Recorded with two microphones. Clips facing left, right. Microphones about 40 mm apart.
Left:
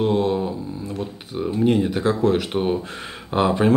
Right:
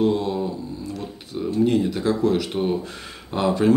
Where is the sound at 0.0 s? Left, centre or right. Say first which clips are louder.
Left 1 dB; left.